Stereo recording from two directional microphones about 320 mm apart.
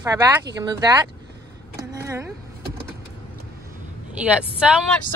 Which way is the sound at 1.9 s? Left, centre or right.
Centre.